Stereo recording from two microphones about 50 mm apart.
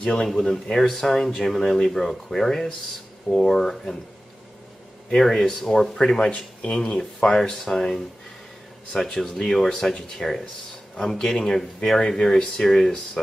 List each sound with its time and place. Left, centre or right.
0.0 s speech: centre
5.1 s speech: centre
9.2 s speech: centre